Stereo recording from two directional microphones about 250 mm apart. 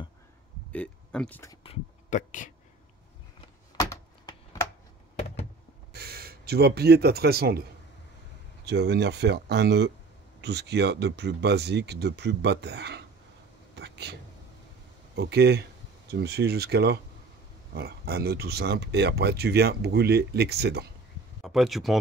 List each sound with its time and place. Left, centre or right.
0.7 s speech: centre; by 2.5 s left
3.3 s a sound: centre
5.9 s a man's voice: right
8.6 s speech: right
13.7 s a sound: right
15.1 s speech: right
21.4 s speech: centre